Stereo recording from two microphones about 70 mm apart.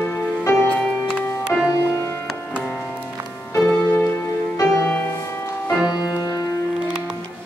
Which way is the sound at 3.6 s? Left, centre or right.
Centre.